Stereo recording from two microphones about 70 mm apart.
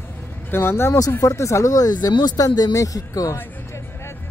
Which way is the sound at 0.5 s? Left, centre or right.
Left.